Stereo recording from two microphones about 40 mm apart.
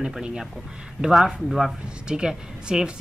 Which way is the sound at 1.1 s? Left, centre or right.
Centre.